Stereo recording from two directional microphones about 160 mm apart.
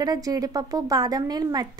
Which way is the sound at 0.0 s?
25° right (ahead or behind).